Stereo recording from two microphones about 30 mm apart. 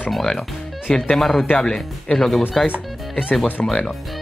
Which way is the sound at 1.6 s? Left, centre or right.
Left.